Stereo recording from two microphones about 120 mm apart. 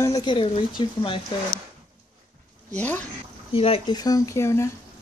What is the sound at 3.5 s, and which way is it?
Speech, 50° left (ahead or behind).